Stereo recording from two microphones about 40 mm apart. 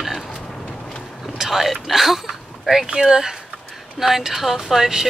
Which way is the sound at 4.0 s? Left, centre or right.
Centre.